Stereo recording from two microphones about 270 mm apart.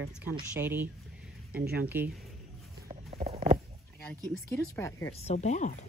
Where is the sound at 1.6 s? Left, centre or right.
Right.